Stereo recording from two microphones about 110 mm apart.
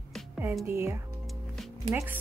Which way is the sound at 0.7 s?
25° right (ahead or behind).